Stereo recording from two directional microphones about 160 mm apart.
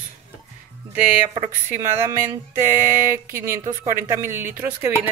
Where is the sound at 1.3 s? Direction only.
15° right (ahead or behind).